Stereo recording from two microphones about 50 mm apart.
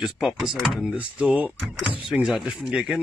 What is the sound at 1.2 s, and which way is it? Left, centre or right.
Speech, right.